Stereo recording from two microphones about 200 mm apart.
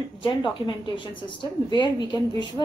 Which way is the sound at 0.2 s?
25° left (ahead or behind).